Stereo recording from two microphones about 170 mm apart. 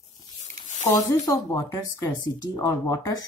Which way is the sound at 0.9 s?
20° left (ahead or behind).